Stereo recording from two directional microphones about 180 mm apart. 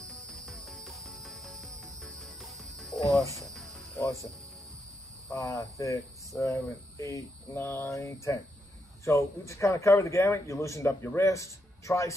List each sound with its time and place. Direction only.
0.3 s music: centre (ahead or behind)
5.3 s speech: 20° left (ahead or behind)